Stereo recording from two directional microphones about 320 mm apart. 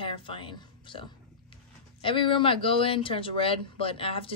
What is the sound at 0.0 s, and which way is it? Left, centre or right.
A woman's voice, centre.